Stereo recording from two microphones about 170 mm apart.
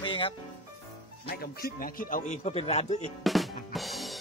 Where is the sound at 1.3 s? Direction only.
65° left (ahead or behind); by 3.0 s 40° left (ahead or behind).